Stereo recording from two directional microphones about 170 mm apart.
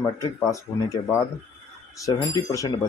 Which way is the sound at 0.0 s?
20° left (ahead or behind).